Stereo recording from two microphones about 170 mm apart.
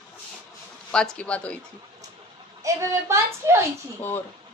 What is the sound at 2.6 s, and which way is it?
Speech, 20° right (ahead or behind).